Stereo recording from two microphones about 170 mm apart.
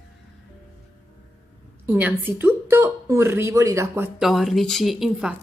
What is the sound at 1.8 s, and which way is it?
Speech, 10° right (ahead or behind).